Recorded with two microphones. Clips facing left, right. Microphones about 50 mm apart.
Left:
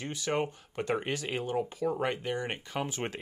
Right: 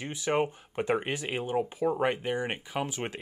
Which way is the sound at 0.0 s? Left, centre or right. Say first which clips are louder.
Right 3 dB; right.